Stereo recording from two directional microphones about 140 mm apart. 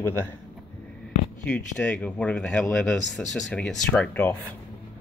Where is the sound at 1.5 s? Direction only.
10° left (ahead or behind).